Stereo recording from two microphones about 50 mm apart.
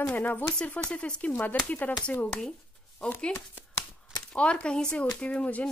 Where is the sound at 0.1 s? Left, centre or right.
Left.